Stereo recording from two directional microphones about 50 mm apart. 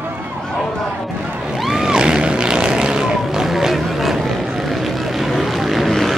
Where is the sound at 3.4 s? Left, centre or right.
Centre.